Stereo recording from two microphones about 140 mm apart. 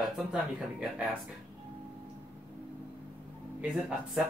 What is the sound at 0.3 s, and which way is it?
Speech, 5° right (ahead or behind).